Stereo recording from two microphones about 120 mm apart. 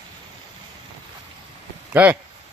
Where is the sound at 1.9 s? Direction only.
15° right (ahead or behind).